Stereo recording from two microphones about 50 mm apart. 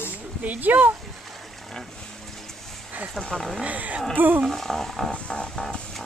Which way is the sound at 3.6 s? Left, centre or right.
Right.